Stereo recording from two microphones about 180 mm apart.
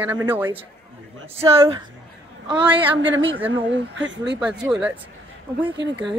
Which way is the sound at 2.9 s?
90° right.